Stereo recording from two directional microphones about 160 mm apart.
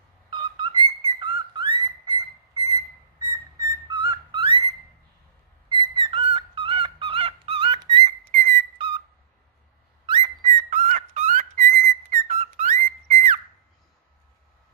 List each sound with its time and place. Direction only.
0.3 s bird: 30° right (ahead or behind)
5.7 s bird: 30° right (ahead or behind)
8.3 s whistle: 60° right (ahead or behind)
8.7 s whistle: 35° right (ahead or behind)
10.0 s bird: 30° right (ahead or behind)
10.4 s whistle: 50° right (ahead or behind)
12.4 s whistle: 45° right (ahead or behind)